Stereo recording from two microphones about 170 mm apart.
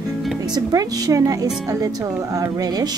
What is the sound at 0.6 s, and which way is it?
Speech, 20° right (ahead or behind).